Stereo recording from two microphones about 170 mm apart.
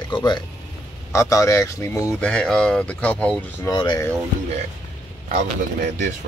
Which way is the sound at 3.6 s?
25° left (ahead or behind).